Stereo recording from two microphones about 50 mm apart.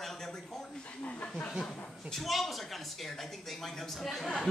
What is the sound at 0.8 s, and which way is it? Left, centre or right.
Speech, left.